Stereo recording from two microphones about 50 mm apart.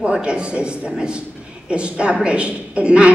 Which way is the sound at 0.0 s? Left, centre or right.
Centre.